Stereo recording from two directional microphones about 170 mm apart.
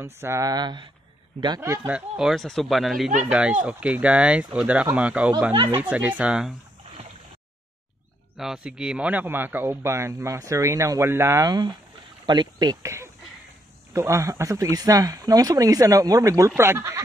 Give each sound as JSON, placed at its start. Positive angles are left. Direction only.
{"t": 0.0, "sound": "speech", "side_deg": -15}
{"t": 1.9, "sound": "speech", "side_deg": -5}
{"t": 5.5, "sound": "speech", "side_deg": -30}
{"t": 5.8, "sound": "speech", "side_deg": -10}
{"t": 8.4, "sound": "speech", "side_deg": -5}